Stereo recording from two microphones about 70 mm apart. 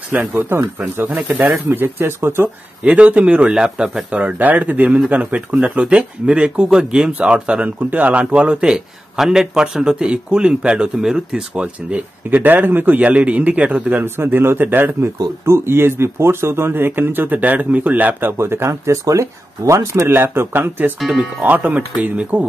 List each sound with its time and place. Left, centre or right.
0.1 s speech: right
2.9 s speech: centre
12.3 s speech: right
13.9 s speech: right
18.4 s speech: right
21.1 s speech: centre
21.5 s speech: right